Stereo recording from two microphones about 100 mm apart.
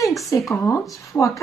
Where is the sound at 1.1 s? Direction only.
15° left (ahead or behind).